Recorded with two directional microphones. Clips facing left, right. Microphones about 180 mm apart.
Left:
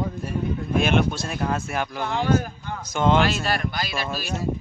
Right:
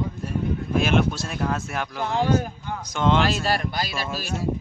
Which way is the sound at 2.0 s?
35° right (ahead or behind).